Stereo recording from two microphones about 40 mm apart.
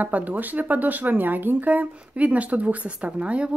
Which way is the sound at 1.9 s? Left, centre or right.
Right.